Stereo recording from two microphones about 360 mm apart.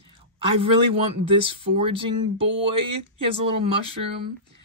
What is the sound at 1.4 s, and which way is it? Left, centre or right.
Speech, centre.